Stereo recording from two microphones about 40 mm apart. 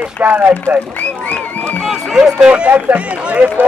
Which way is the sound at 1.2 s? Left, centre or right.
Left.